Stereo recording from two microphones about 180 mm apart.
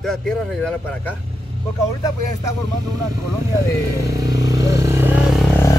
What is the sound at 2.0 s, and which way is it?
Speech, 20° left (ahead or behind).